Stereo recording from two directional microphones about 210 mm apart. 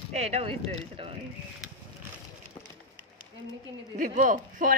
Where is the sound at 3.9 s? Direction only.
40° right (ahead or behind).